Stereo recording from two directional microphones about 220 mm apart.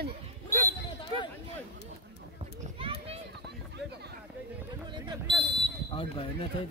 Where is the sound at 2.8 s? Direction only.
25° right (ahead or behind).